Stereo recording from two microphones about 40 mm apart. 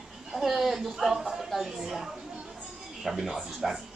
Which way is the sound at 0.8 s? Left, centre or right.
Centre.